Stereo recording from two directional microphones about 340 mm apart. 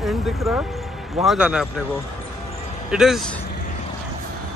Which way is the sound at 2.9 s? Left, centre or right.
Centre.